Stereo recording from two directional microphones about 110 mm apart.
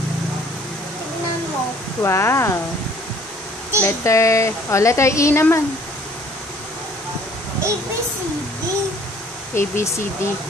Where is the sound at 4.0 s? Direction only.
25° left (ahead or behind).